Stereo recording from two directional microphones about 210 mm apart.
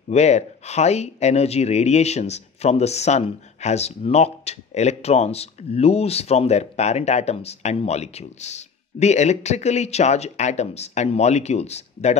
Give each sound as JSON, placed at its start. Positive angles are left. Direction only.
{"t": 0.1, "sound": "speech", "side_deg": 30}